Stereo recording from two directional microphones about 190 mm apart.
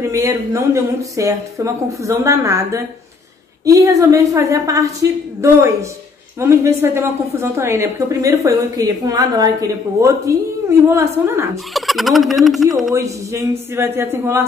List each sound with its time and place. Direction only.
0.0 s a woman's voice: 15° right (ahead or behind)
11.5 s speech: centre (ahead or behind)
12.9 s a woman's voice: 15° right (ahead or behind)